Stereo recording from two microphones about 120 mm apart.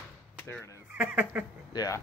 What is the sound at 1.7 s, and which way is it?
Speech, 30° left (ahead or behind).